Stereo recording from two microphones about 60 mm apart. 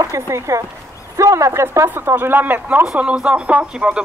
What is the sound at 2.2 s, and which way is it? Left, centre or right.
Speech, right.